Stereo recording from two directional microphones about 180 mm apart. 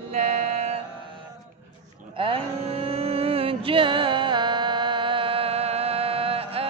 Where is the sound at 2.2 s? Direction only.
30° right (ahead or behind).